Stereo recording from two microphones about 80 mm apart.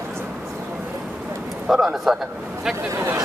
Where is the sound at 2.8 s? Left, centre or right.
Right.